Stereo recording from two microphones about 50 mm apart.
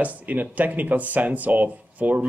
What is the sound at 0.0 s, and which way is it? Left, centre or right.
Speech, right.